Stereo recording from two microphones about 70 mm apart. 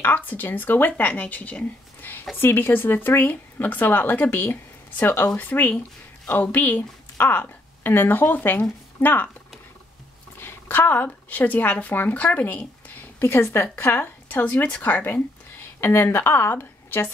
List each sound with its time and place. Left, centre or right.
0.0 s a woman's voice: left
10.4 s speech: left